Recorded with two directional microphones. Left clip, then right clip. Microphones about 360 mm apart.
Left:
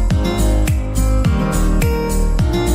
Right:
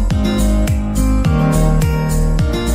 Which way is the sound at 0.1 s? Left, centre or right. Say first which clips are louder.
Right 1 dB; centre.